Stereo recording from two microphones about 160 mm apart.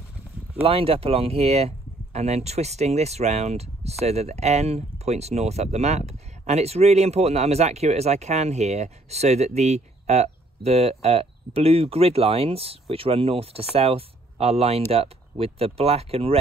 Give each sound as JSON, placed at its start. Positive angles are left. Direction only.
{"t": 0.6, "sound": "speech", "side_deg": -35}